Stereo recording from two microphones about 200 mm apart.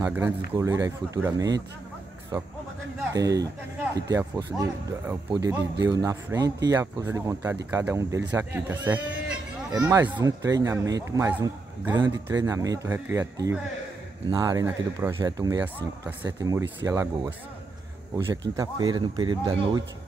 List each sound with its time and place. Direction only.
0.0 s speech: 10° right (ahead or behind)
3.1 s speech: 15° right (ahead or behind)